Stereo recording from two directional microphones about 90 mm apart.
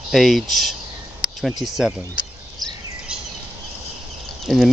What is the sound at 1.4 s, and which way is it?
Speech, 5° right (ahead or behind).